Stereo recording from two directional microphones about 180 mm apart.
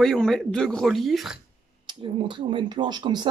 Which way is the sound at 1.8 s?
25° right (ahead or behind).